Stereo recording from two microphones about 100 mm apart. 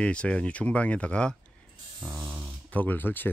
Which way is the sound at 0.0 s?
10° left (ahead or behind).